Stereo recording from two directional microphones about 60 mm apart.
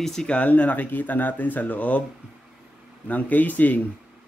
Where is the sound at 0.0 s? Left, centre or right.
Centre.